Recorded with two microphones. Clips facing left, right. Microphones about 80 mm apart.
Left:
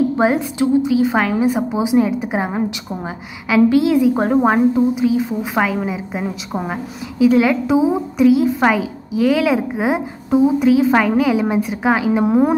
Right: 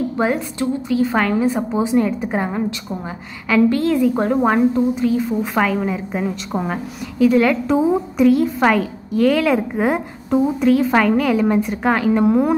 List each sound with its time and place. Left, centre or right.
0.2 s a woman's voice: centre
12.3 s a woman's voice: left